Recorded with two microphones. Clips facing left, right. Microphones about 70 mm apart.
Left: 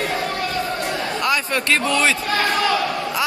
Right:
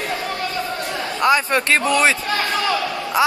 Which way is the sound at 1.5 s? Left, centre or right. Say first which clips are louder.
Right 2 dB; right.